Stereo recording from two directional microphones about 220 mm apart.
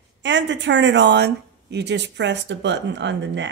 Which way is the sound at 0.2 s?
55° right (ahead or behind).